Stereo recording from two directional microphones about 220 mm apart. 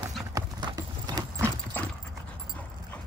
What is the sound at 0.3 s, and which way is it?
Clip-clop, 15° right (ahead or behind).